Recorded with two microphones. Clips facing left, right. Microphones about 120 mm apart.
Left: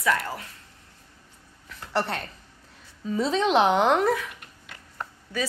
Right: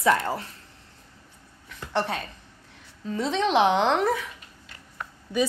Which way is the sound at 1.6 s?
Centre (ahead or behind).